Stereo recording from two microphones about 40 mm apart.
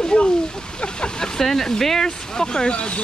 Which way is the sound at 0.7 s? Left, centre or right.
Left.